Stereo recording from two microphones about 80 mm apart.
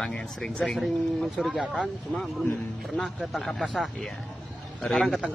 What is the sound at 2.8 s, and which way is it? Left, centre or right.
Speech, centre.